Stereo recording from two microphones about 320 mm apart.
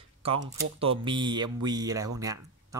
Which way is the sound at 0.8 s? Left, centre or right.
Centre.